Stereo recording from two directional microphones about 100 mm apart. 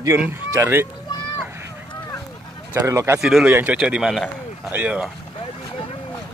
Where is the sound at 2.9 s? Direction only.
30° right (ahead or behind).